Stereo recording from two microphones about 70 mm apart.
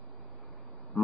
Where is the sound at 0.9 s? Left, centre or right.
Centre.